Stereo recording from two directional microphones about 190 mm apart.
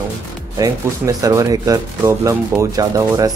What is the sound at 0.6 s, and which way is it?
Speech, 15° right (ahead or behind).